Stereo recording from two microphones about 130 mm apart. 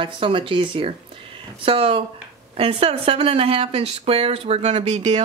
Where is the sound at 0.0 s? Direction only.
40° right (ahead or behind).